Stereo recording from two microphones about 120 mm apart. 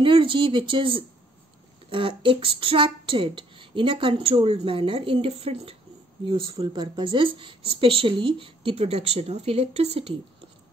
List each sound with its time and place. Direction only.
0.0 s a woman's voice: 45° right (ahead or behind)